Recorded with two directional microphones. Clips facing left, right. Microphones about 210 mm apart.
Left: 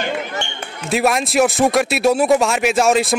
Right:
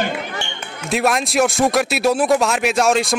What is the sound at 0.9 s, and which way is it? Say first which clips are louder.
Speech: left 1 dB; centre (ahead or behind).